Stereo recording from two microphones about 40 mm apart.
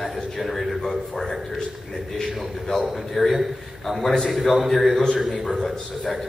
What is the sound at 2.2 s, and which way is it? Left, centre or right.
A man's voice, centre.